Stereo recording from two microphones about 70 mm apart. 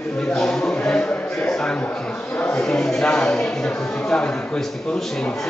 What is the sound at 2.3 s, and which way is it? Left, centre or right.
Speech, left.